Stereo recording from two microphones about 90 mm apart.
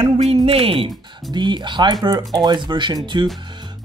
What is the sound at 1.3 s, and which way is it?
Speech, 60° right (ahead or behind).